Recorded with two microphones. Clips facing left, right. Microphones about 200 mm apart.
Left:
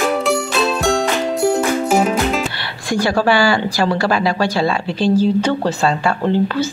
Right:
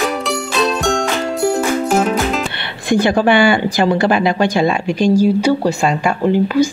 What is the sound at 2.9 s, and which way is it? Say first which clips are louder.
Speech: right 3 dB; 20° right (ahead or behind).